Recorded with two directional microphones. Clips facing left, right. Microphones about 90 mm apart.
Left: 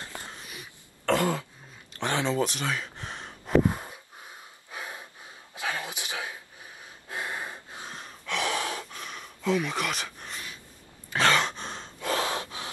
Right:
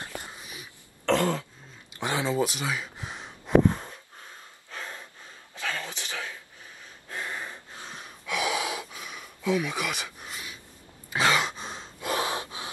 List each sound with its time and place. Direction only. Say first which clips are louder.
0.3 s a sound: even; 5° right (ahead or behind)
1.0 s throat clearing: right 1 dB; 10° left (ahead or behind)
2.0 s a sound: even; 5° right (ahead or behind)
3.6 s gasp: right 3 dB; 10° left (ahead or behind)
7.9 s gasp: right 1 dB; 5° right (ahead or behind)
11.1 s sigh: left 1 dB; 10° right (ahead or behind)
12.0 s gasp: even; 20° right (ahead or behind)